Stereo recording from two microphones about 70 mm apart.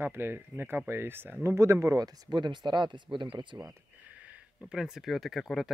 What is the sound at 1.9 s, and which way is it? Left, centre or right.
Speech, right.